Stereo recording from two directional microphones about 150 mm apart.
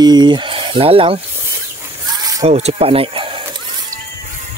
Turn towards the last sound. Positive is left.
turn(degrees=-35)  # may be behind; listen again after turning